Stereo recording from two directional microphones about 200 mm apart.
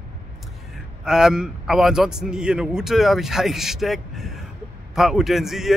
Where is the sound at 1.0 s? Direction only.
5° right (ahead or behind).